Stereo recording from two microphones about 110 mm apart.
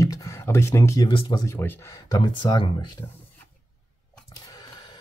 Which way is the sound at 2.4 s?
45° left (ahead or behind).